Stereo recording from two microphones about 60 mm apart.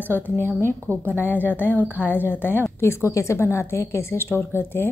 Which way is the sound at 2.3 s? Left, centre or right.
Left.